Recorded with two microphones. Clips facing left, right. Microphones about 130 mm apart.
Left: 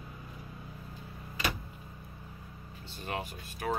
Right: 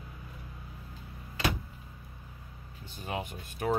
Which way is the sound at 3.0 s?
15° right (ahead or behind).